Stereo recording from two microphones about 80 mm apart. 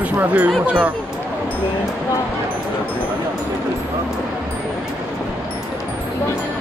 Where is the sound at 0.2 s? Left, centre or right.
Right.